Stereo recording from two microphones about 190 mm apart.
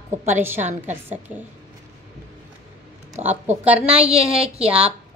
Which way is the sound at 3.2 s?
40° right (ahead or behind).